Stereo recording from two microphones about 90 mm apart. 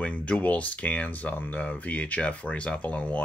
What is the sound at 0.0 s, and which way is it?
Speech, 15° left (ahead or behind).